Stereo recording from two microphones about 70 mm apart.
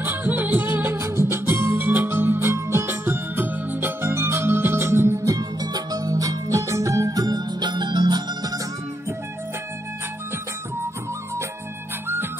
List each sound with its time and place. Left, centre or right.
0.0 s music: right